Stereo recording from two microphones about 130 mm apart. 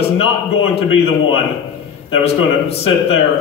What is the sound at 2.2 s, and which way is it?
Speech, 50° left (ahead or behind).